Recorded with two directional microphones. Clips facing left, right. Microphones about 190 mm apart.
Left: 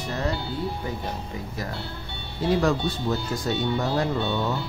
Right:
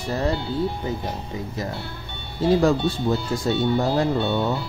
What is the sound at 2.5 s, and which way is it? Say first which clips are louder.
Speech: right 3 dB; 30° right (ahead or behind).